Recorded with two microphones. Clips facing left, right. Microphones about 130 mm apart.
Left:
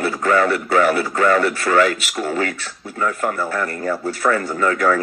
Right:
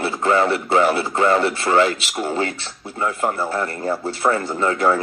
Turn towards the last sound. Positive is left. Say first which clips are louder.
# left 1 dB
turn(degrees=-25)  # may be behind; listen again after turning